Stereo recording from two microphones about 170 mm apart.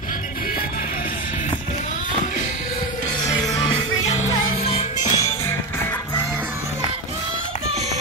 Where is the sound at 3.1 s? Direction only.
20° left (ahead or behind).